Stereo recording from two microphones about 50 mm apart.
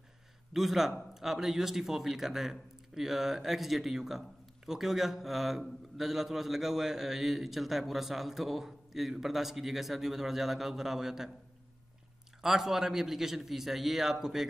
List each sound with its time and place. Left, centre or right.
0.5 s a man's voice: centre
12.4 s a man's voice: centre